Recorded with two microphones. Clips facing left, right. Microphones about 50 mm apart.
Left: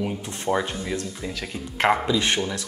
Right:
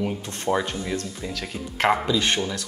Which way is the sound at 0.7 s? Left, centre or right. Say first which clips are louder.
Even; centre.